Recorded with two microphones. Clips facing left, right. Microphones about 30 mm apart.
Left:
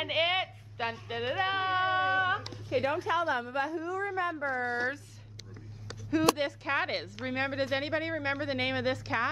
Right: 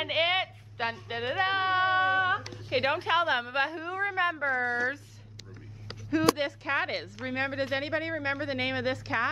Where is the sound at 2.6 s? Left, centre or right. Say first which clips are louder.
Right 2 dB; right.